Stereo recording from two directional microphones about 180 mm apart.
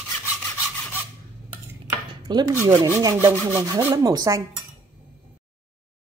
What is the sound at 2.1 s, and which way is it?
Chopping, 25° right (ahead or behind).